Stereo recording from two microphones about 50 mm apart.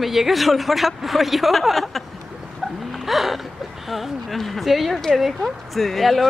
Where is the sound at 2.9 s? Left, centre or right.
Centre.